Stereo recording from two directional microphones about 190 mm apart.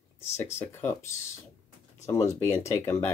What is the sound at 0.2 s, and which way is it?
Speech, 15° left (ahead or behind).